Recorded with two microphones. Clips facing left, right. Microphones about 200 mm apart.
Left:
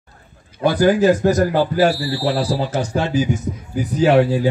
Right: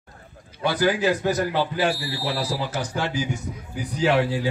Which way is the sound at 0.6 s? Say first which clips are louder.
Left 7 dB; 50° left (ahead or behind).